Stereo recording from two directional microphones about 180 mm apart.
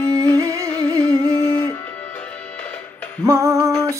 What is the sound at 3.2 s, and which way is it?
Speech, 20° right (ahead or behind).